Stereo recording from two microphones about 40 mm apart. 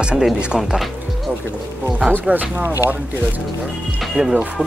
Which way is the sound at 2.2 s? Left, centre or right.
Right.